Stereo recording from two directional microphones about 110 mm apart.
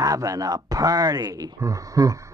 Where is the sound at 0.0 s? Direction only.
30° right (ahead or behind).